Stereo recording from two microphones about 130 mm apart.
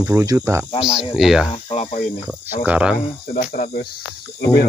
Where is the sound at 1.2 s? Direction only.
Centre (ahead or behind).